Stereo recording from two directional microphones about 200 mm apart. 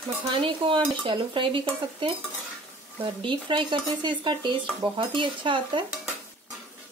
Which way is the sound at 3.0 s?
25° right (ahead or behind).